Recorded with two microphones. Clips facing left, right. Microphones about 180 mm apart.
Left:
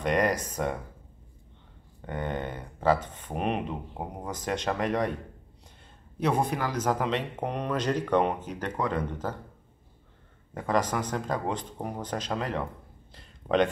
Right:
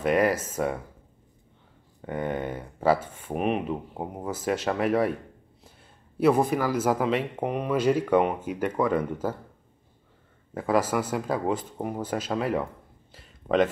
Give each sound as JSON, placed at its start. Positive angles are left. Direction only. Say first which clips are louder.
{"t": 0.0, "sound": "speech", "louder": "right 3 dB", "side_deg": -5}
{"t": 2.0, "sound": "speech", "louder": "right 3 dB", "side_deg": -10}
{"t": 6.1, "sound": "speech", "louder": "right 5 dB", "side_deg": -5}
{"t": 10.5, "sound": "speech", "louder": "right 3 dB", "side_deg": -5}
{"t": 13.1, "sound": "a sound", "louder": "right 2 dB", "side_deg": 0}